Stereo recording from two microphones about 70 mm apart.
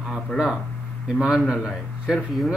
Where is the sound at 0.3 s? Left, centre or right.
Centre.